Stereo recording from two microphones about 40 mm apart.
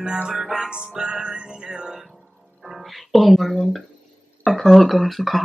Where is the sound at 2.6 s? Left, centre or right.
Centre.